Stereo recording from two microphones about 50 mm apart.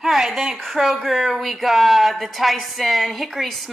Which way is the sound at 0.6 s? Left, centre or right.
Centre.